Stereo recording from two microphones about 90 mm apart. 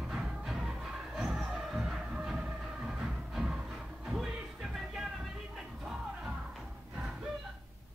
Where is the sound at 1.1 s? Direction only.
5° right (ahead or behind).